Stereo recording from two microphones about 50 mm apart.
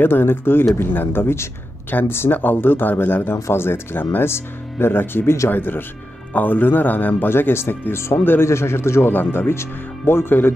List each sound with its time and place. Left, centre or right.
0.0 s speech: left
1.9 s speech: left
3.9 s speech: left
4.3 s speech: left
8.4 s a man's voice: left
9.1 s speech: left